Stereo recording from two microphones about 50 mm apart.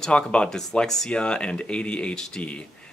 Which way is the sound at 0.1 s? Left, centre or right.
Left.